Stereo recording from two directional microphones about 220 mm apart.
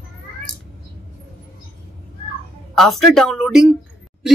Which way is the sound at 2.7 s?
Centre (ahead or behind).